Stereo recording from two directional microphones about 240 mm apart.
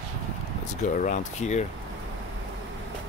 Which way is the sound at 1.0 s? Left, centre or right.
Left.